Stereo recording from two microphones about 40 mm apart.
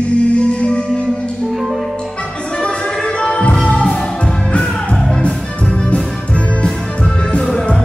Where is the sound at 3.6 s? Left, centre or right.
Centre.